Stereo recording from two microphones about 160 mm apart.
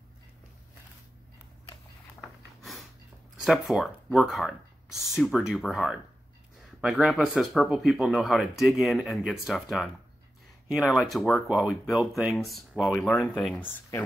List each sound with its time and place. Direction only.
2.2 s a sound: centre (ahead or behind)
3.3 s speech: centre (ahead or behind)
13.7 s speech: 15° left (ahead or behind)